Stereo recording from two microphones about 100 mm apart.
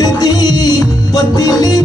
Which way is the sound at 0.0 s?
40° left (ahead or behind).